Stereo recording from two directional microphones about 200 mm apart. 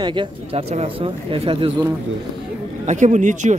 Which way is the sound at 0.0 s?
25° right (ahead or behind).